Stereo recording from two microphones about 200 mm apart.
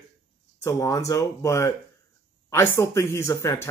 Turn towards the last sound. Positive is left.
turn(degrees=15)  # may be behind; listen again after turning